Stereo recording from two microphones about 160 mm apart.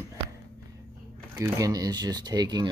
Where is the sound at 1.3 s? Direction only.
20° right (ahead or behind).